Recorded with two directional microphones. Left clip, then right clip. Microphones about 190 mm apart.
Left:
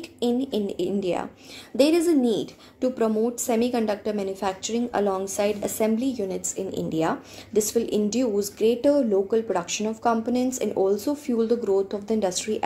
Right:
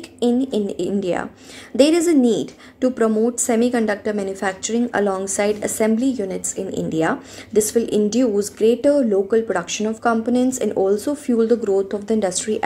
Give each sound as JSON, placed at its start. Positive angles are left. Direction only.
{"t": 0.2, "sound": "a woman's voice", "side_deg": -15}